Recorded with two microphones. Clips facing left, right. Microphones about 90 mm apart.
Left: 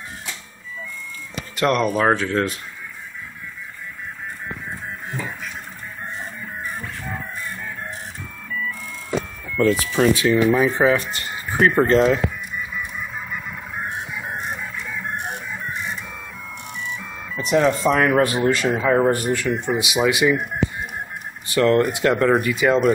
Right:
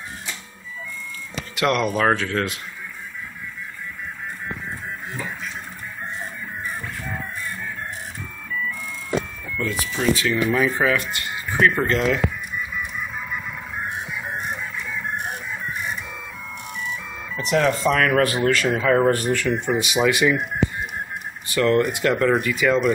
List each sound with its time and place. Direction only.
1.5 s speech: 35° left (ahead or behind)
2.0 s speech: 25° left (ahead or behind)
9.6 s speech: 50° left (ahead or behind)
10.1 s speech: 20° left (ahead or behind)
17.5 s speech: 20° left (ahead or behind)
21.5 s speech: 30° left (ahead or behind)
21.8 s speech: 20° left (ahead or behind)